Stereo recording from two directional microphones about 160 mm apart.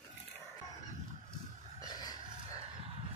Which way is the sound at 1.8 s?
25° left (ahead or behind).